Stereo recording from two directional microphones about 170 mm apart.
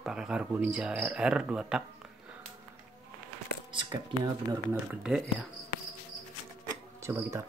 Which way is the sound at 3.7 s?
30° right (ahead or behind).